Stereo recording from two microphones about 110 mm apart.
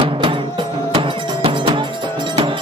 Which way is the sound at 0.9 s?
55° right (ahead or behind).